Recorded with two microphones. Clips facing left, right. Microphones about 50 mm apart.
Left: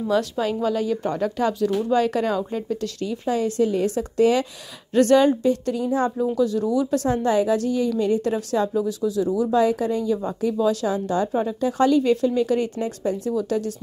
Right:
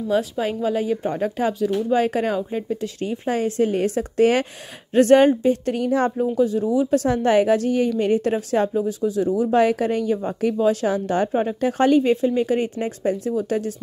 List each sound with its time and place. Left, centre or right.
0.6 s speech: right
3.1 s a woman's voice: right
5.8 s speech: right
6.3 s speech: right
7.2 s a woman's voice: right